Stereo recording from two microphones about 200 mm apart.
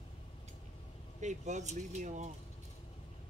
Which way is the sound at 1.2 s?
35° right (ahead or behind).